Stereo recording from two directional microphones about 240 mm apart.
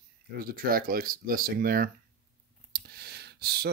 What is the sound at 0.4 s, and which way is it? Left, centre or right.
Speech, right.